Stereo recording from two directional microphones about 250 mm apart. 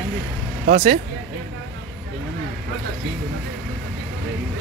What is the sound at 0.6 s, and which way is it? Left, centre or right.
Speech, right.